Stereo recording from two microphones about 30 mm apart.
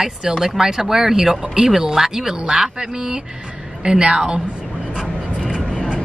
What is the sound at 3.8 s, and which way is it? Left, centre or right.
Speech, right.